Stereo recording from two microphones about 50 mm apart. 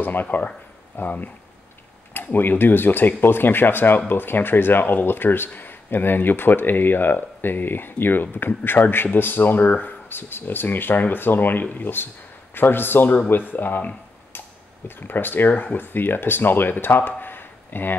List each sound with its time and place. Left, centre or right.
0.0 s speech: left